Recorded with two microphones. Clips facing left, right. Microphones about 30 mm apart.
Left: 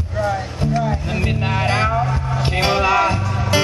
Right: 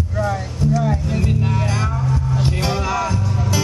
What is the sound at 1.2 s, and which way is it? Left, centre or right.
Music, left.